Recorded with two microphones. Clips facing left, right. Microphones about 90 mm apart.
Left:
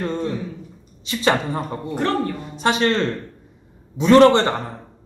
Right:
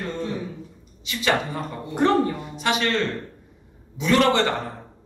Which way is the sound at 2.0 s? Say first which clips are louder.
Right 3 dB; 15° right (ahead or behind).